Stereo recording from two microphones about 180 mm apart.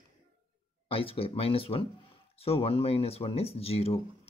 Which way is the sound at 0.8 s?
30° left (ahead or behind).